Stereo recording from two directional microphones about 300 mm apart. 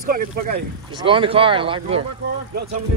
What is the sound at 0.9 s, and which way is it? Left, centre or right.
Speech, centre.